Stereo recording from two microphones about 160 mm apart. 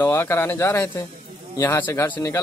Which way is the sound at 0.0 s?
15° left (ahead or behind).